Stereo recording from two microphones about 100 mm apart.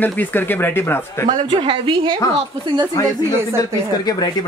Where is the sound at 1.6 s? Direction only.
55° right (ahead or behind).